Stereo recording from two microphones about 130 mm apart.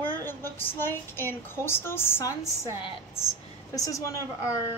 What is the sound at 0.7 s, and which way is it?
Speech, 15° left (ahead or behind).